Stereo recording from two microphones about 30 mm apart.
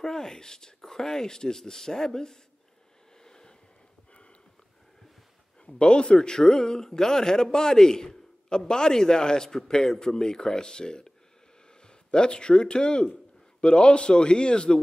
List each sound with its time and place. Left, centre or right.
0.0 s a man's voice: centre
3.3 s a sound: left
5.8 s speech: left
6.1 s a man's voice: centre